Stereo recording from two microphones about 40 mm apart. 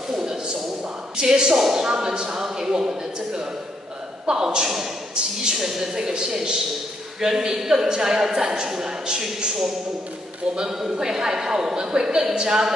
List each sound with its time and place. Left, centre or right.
0.1 s a sound: centre
1.1 s a man's voice: centre
10.5 s a man's voice: centre